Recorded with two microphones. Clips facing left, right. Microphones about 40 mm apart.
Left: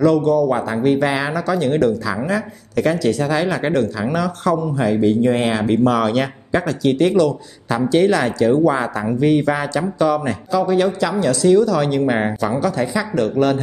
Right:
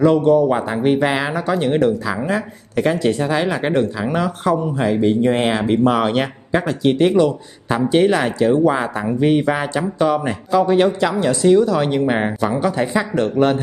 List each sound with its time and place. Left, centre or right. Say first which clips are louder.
0.0 s speech: right 1 dB; right